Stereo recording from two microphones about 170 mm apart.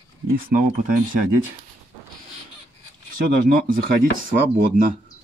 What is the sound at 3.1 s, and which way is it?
Speech, 55° right (ahead or behind).